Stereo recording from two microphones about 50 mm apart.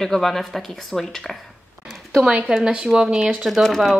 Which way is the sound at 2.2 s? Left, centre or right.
Right.